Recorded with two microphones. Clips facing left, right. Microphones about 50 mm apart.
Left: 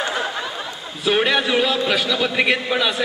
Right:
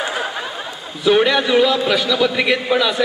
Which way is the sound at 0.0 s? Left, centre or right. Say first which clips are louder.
Right 1 dB; centre.